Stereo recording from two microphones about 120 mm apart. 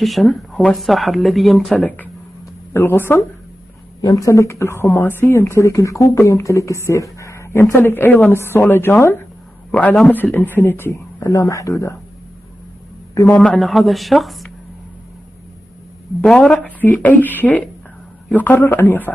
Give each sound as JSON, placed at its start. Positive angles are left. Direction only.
{"t": 0.0, "sound": "speech", "side_deg": 0}
{"t": 1.8, "sound": "a woman's voice", "side_deg": 15}
{"t": 4.0, "sound": "a man's voice", "side_deg": 30}
{"t": 13.1, "sound": "a man's voice", "side_deg": 25}
{"t": 13.4, "sound": "speech", "side_deg": 5}
{"t": 16.2, "sound": "a woman's voice", "side_deg": 5}